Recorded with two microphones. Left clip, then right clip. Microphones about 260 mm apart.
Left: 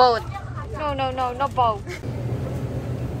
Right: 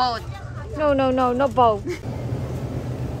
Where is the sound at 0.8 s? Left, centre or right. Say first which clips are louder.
Right 5 dB; right.